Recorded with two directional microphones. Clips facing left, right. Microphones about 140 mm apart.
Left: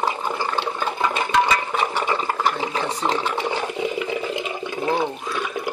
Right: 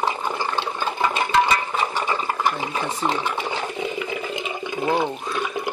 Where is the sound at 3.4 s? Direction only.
10° left (ahead or behind).